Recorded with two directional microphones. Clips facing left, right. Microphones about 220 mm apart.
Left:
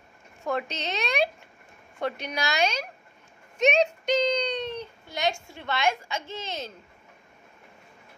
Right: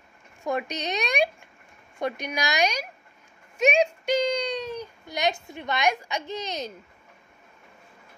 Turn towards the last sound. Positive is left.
turn(degrees=-15)  # may be behind; listen again after turning